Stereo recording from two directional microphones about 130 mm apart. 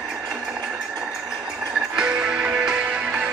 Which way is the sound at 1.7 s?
5° right (ahead or behind).